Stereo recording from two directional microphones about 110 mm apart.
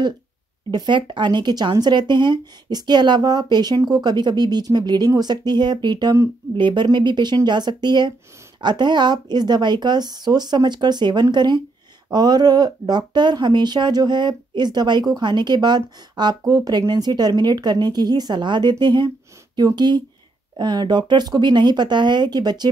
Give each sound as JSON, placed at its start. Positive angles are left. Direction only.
{"t": 0.7, "sound": "speech", "side_deg": -45}